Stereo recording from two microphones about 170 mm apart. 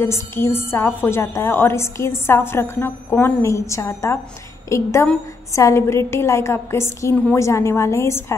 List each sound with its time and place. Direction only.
0.0 s a woman's voice: 15° left (ahead or behind)